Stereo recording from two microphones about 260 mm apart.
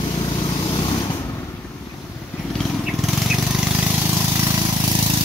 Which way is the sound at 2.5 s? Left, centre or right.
Centre.